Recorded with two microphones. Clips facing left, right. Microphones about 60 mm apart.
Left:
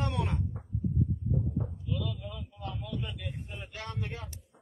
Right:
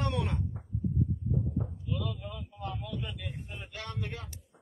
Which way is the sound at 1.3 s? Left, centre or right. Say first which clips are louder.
Even; centre.